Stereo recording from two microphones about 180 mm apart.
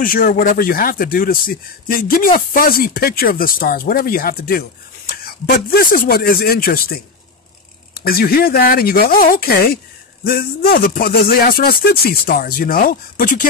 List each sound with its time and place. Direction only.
0.0 s speech: 50° left (ahead or behind)